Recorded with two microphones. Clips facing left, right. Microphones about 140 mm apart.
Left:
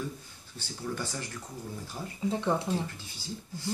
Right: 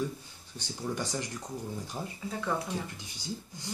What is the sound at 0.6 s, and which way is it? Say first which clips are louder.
Speech: right 1 dB; 15° right (ahead or behind).